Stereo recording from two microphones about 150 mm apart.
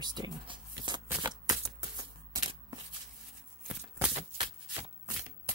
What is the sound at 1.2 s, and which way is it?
Shuffling cards, 25° right (ahead or behind).